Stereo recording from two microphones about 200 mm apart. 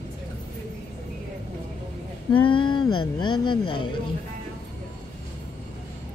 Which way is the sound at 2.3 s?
25° left (ahead or behind).